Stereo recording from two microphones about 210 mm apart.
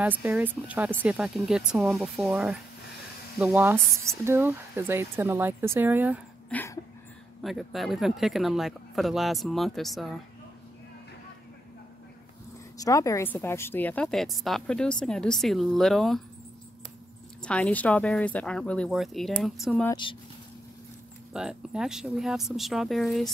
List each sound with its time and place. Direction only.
0.0 s a woman's voice: 10° right (ahead or behind)
6.5 s a sound: 10° left (ahead or behind)
7.4 s a woman's voice: centre (ahead or behind)
12.7 s a woman's voice: 15° left (ahead or behind)
17.4 s a woman's voice: 5° left (ahead or behind)
19.9 s speech: 25° left (ahead or behind)
21.3 s a woman's voice: 5° right (ahead or behind)